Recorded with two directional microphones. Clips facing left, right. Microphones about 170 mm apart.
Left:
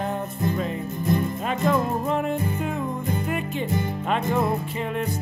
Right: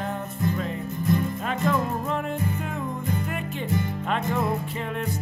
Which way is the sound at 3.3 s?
10° left (ahead or behind).